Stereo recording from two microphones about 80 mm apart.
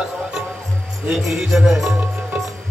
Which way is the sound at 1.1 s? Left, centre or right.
Centre.